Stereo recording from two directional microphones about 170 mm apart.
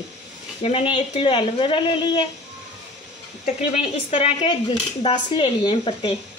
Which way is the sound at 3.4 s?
40° left (ahead or behind).